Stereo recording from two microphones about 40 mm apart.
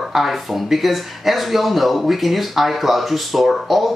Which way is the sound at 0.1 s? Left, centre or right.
Centre.